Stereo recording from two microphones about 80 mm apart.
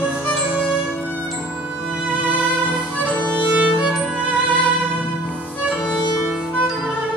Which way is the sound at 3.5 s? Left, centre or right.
Centre.